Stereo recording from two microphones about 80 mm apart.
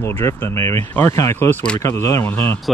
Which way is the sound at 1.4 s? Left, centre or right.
Left.